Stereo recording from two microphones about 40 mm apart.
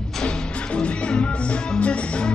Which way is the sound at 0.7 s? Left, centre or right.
Left.